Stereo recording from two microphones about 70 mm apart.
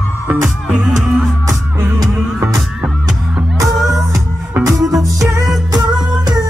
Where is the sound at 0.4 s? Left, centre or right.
Centre.